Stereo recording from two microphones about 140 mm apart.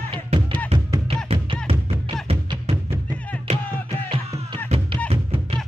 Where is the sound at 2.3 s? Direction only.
45° right (ahead or behind).